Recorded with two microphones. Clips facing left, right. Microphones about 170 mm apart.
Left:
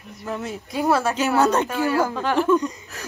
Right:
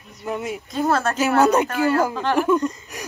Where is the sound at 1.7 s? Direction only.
5° left (ahead or behind).